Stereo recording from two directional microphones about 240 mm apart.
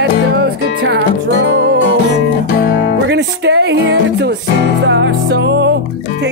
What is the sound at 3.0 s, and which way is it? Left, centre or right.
Music, right.